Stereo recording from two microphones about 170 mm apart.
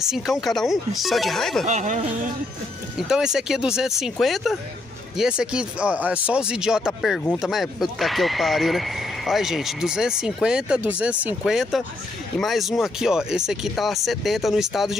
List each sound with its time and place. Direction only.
0.1 s speech: centre (ahead or behind)
1.7 s speech: 45° right (ahead or behind)
3.0 s speech: 5° right (ahead or behind)